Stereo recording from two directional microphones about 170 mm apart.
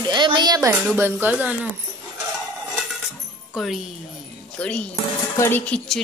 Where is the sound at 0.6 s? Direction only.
15° right (ahead or behind).